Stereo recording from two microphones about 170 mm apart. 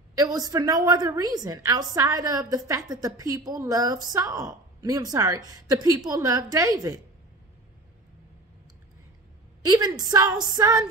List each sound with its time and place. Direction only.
0.2 s a woman's voice: 20° right (ahead or behind)
9.7 s a woman's voice: 25° right (ahead or behind)